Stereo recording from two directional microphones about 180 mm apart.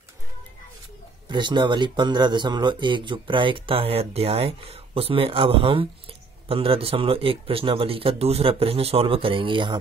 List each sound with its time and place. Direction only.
1.3 s speech: 25° right (ahead or behind)